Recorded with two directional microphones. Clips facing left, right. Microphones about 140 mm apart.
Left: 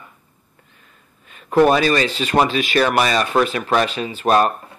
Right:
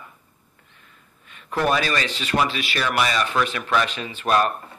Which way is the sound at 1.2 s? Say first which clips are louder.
Left 9 dB; 35° left (ahead or behind).